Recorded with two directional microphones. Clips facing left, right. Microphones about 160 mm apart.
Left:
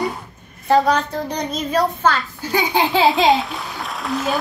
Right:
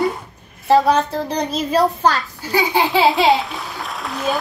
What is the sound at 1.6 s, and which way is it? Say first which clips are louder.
Speech: right 3 dB; 35° right (ahead or behind).